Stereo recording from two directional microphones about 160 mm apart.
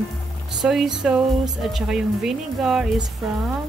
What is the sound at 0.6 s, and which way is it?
Speech, centre (ahead or behind).